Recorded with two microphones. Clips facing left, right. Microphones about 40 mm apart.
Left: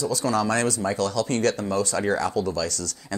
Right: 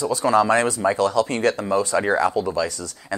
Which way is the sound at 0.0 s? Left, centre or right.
Right.